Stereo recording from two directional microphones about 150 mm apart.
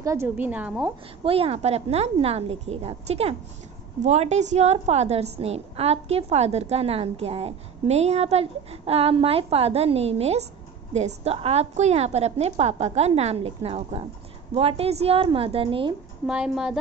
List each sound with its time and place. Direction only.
0.0 s a woman's voice: 20° right (ahead or behind)
1.2 s a woman's voice: 40° right (ahead or behind)
16.3 s a woman's voice: 5° right (ahead or behind)